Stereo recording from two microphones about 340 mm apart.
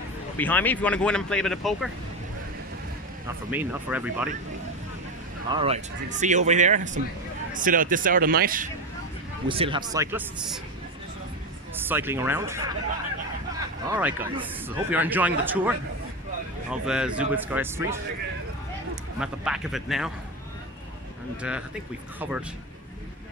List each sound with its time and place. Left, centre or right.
0.4 s speech: centre
3.3 s speech: centre
5.5 s speech: centre
9.5 s speech: centre
11.7 s speech: centre
13.8 s speech: centre
16.7 s speech: centre
19.1 s speech: centre
21.4 s speech: centre